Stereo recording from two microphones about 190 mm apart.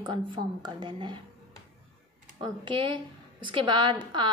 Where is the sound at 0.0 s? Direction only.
25° right (ahead or behind).